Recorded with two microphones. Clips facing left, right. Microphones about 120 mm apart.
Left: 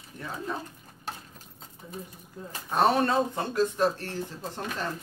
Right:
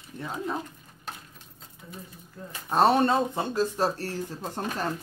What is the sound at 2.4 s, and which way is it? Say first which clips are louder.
Speech: left 1 dB; 15° left (ahead or behind).